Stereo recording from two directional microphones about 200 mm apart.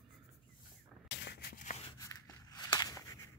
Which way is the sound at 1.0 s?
60° left (ahead or behind).